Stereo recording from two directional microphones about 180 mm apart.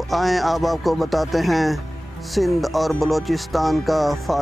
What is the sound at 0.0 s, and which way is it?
Speech, centre (ahead or behind).